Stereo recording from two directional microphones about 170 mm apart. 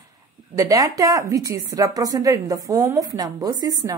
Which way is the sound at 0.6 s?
20° right (ahead or behind).